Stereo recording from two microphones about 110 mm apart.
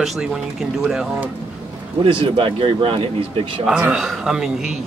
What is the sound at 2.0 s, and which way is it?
Speech, 55° right (ahead or behind).